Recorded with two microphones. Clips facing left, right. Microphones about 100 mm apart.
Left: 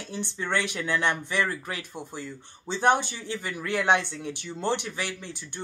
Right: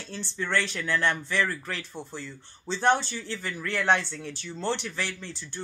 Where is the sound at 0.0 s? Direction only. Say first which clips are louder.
Left 1 dB; 15° left (ahead or behind).